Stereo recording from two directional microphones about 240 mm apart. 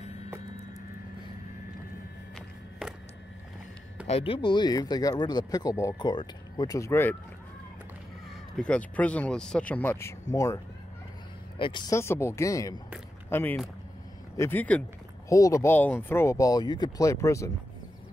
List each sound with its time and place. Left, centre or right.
2.8 s a sound: centre
4.1 s speech: left
8.5 s speech: centre